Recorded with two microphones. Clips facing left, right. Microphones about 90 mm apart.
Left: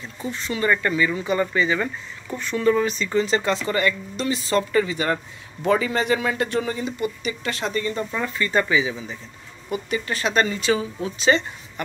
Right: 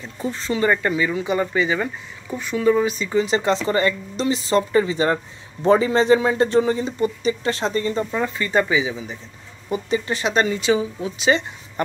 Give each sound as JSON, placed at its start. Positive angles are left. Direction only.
{"t": 0.2, "sound": "speech", "side_deg": -35}